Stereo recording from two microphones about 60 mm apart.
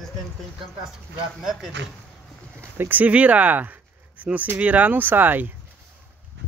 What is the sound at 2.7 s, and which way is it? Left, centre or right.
Speech, right.